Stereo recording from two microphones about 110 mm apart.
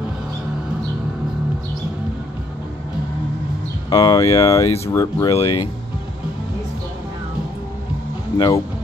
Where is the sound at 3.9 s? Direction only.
40° left (ahead or behind).